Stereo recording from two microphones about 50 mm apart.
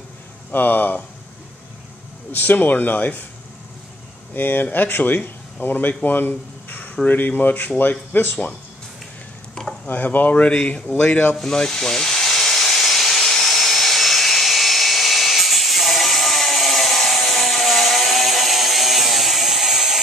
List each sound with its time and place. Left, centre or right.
0.5 s speech: left
2.3 s speech: left
4.3 s speech: left
9.8 s speech: left
11.3 s steam: centre